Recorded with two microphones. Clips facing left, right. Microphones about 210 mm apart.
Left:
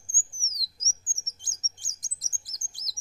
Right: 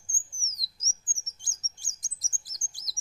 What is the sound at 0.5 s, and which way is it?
Chirp, 20° left (ahead or behind).